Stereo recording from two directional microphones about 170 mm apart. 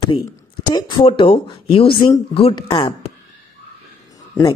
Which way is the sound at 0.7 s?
25° left (ahead or behind).